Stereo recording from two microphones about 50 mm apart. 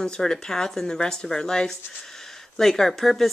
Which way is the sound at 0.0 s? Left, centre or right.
Centre.